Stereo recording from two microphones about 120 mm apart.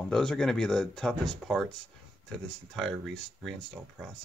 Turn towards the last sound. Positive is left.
turn(degrees=5)  # may be behind; listen again after turning